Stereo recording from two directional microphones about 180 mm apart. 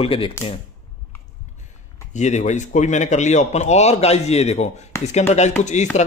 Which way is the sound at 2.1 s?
40° left (ahead or behind).